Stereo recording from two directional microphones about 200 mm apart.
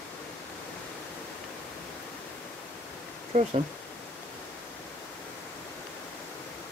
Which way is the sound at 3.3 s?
35° right (ahead or behind).